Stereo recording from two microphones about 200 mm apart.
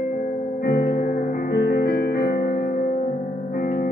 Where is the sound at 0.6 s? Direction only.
45° left (ahead or behind).